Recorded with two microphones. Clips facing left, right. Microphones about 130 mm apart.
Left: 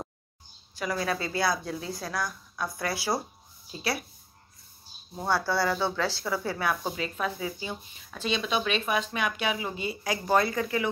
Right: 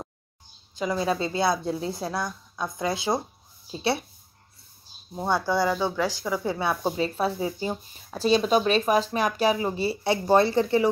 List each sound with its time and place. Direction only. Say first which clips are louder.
0.7 s a woman's voice: right 4 dB; 25° right (ahead or behind)
5.1 s speech: right 3 dB; 20° right (ahead or behind)
6.6 s speech: right 4 dB; 30° right (ahead or behind)